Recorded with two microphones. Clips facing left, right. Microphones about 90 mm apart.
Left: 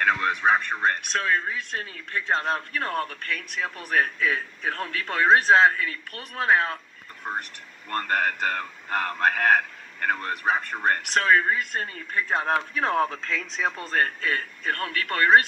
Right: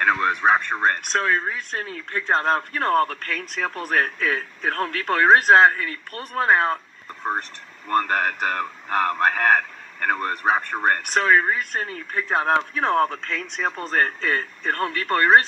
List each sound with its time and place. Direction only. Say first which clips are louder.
0.0 s speech: right 3 dB; 35° right (ahead or behind)
8.0 s speech: left 3 dB; 25° right (ahead or behind)
8.5 s speech: right 5 dB; 35° right (ahead or behind); by 12.6 s 15° right (ahead or behind)
12.7 s speech: right 3 dB; centre (ahead or behind)
13.8 s speech: right 5 dB; 25° right (ahead or behind)